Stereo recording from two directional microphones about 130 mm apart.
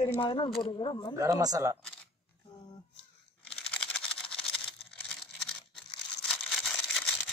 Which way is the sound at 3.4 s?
5° left (ahead or behind).